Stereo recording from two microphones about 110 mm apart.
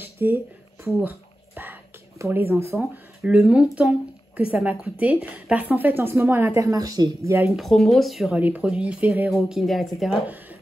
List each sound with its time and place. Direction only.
0.0 s a sound: 20° right (ahead or behind)
2.1 s speech: 25° right (ahead or behind)
3.2 s speech: 5° right (ahead or behind); by 7.4 s 30° right (ahead or behind)
7.5 s speech: centre (ahead or behind)
8.4 s speech: 15° right (ahead or behind)